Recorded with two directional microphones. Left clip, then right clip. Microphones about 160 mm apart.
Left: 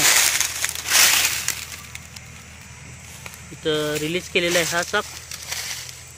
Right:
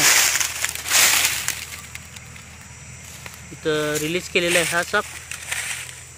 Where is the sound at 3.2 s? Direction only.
5° right (ahead or behind).